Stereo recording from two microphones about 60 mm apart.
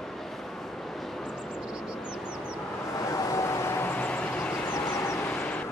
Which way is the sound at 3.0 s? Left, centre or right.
Left.